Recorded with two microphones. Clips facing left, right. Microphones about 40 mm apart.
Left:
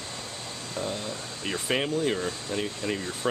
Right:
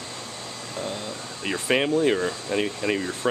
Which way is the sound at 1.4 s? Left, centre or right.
Right.